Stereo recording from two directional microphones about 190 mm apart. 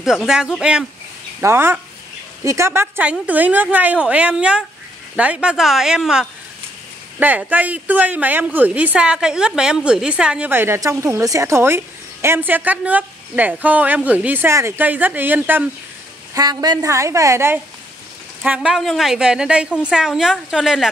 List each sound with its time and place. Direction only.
0.0 s a woman's voice: centre (ahead or behind)
16.3 s a woman's voice: 20° right (ahead or behind); by 20.9 s centre (ahead or behind)